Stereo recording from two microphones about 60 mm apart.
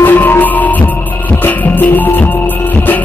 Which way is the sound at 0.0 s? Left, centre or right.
Left.